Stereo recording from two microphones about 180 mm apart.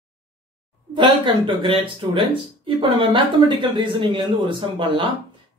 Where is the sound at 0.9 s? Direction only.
25° right (ahead or behind).